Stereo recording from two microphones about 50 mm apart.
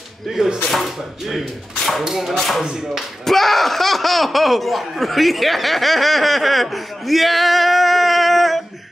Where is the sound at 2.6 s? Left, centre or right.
Centre.